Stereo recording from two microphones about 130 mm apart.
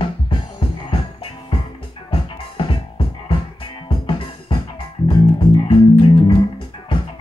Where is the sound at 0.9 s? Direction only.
45° left (ahead or behind).